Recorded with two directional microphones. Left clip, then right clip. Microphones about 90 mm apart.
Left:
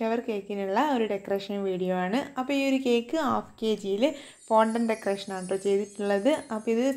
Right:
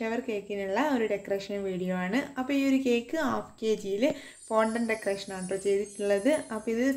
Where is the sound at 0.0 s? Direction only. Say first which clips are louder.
Left 3 dB; 35° left (ahead or behind).